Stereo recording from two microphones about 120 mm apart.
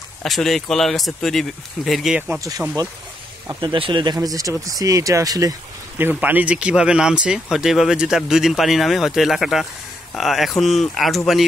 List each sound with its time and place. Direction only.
0.2 s speech: 5° left (ahead or behind)
2.3 s speech: 30° right (ahead or behind)
3.6 s speech: 45° right (ahead or behind)
5.9 s speech: 15° right (ahead or behind); by 11.1 s centre (ahead or behind)